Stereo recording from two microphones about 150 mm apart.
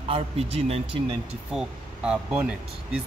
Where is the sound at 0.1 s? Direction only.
40° right (ahead or behind).